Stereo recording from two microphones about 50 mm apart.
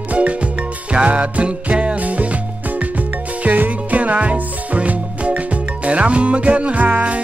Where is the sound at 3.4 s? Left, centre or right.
Right.